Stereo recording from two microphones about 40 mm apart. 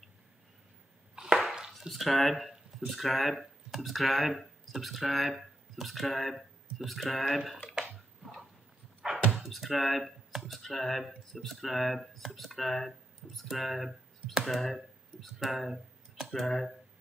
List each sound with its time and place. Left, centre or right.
1.1 s a sound: centre
1.7 s speech: centre
9.3 s speech: centre
15.3 s speech: centre